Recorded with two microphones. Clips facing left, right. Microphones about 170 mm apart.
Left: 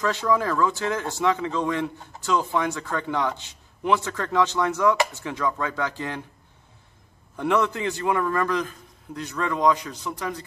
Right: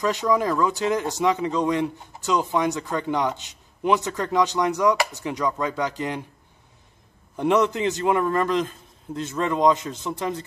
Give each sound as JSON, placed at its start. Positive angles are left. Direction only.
{"t": 0.0, "sound": "speech", "side_deg": -15}
{"t": 7.3, "sound": "a man's voice", "side_deg": -20}